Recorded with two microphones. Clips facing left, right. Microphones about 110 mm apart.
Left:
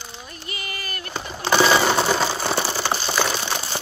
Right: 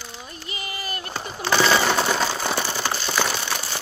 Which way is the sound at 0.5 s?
25° right (ahead or behind).